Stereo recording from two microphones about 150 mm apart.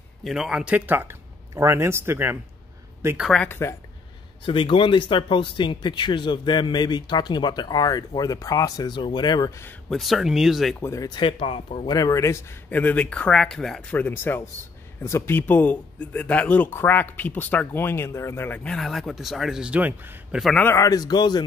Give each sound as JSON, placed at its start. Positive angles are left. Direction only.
{"t": 0.2, "sound": "speech", "side_deg": 0}
{"t": 3.2, "sound": "speech", "side_deg": 0}
{"t": 3.4, "sound": "speech", "side_deg": 15}
{"t": 4.5, "sound": "speech", "side_deg": 35}
{"t": 9.8, "sound": "speech", "side_deg": 0}
{"t": 10.8, "sound": "speech", "side_deg": 20}
{"t": 20.5, "sound": "speech", "side_deg": 15}